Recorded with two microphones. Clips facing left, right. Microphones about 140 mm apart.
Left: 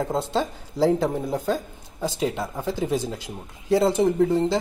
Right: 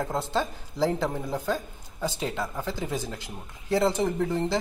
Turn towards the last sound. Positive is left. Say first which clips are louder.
# left 6 dB
turn(degrees=15)  # may be behind; listen again after turning